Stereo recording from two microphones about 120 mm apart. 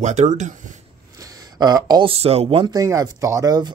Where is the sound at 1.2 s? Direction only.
30° right (ahead or behind).